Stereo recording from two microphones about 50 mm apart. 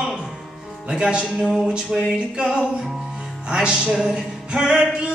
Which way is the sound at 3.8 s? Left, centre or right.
Centre.